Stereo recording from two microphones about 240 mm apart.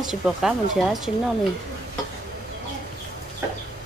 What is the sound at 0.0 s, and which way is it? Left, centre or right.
Speech, centre.